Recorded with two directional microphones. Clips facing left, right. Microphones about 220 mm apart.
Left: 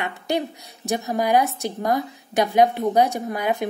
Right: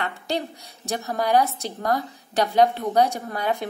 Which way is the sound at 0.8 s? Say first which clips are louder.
Left 3 dB; 15° left (ahead or behind).